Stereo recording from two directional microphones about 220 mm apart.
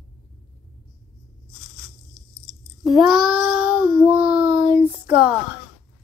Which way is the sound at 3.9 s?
20° right (ahead or behind).